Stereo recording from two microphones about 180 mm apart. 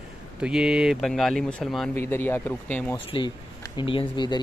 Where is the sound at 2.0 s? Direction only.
10° left (ahead or behind).